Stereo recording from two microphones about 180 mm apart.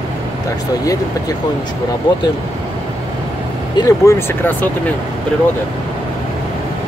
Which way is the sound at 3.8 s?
15° left (ahead or behind).